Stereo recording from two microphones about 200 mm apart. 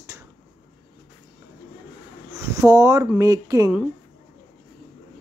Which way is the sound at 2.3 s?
15° right (ahead or behind).